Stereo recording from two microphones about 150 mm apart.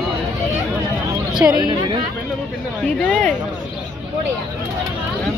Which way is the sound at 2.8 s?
5° left (ahead or behind).